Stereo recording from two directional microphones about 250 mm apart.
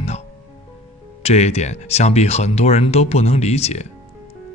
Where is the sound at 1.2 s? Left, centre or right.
Left.